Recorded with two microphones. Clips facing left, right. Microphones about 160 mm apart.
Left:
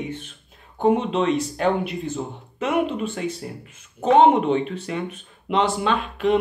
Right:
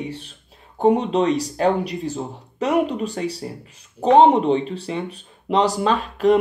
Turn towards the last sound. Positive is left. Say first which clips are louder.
# right 3 dB
turn(degrees=-40)  # may be behind; listen again after turning